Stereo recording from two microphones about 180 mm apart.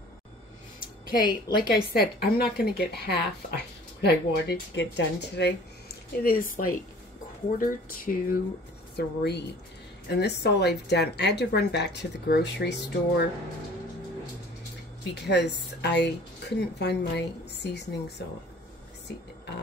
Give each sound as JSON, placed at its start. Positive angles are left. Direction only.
{"t": 0.7, "sound": "a woman's voice", "side_deg": 55}
{"t": 8.9, "sound": "a woman's voice", "side_deg": 65}
{"t": 15.2, "sound": "a woman's voice", "side_deg": 70}